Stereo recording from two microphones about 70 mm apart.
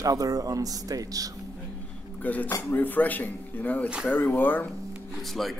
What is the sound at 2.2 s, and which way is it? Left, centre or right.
Speech, left.